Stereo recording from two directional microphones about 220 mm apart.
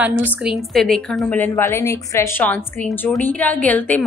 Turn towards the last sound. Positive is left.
turn(degrees=5)  # may be behind; listen again after turning